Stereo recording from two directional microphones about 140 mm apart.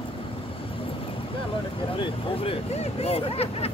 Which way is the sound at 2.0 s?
40° left (ahead or behind).